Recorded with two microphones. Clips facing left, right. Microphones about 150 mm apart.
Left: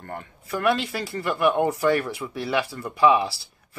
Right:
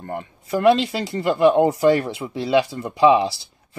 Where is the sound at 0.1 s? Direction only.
25° right (ahead or behind).